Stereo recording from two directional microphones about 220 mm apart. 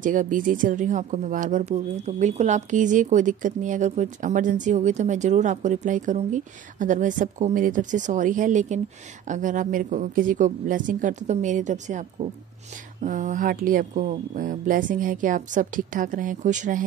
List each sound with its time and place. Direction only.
0.0 s speech: 35° right (ahead or behind)